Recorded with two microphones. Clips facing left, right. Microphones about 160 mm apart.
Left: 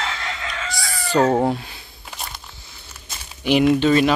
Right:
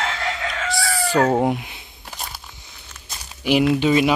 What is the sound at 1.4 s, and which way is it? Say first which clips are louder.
Speech: even; 20° right (ahead or behind).